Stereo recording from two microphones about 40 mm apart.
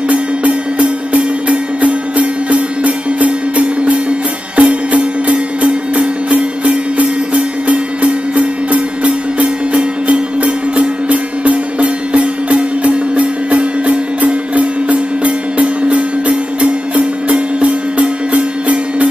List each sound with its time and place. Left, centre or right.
0.1 s music: right